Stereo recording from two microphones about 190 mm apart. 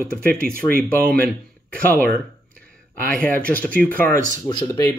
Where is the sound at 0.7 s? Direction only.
50° right (ahead or behind).